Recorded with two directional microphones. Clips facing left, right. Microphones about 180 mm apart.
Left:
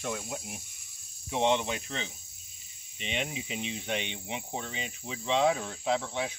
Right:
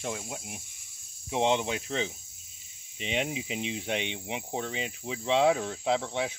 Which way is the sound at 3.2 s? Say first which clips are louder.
Right 3 dB; 90° right.